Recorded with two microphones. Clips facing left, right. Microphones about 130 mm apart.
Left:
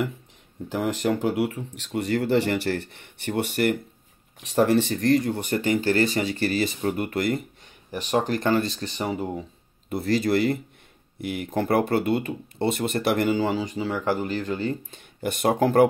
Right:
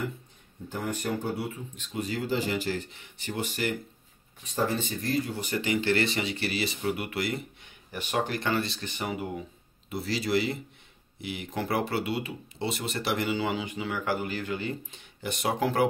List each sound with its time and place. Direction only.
0.7 s speech: 90° left; by 3.7 s 60° left (ahead or behind)
4.4 s speech: 85° left; by 7.4 s 45° left (ahead or behind)
8.0 s speech: 35° left (ahead or behind)
9.8 s speech: 50° left (ahead or behind)
13.4 s speech: 35° left (ahead or behind)